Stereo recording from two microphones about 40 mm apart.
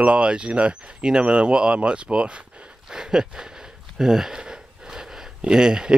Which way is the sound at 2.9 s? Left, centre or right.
Centre.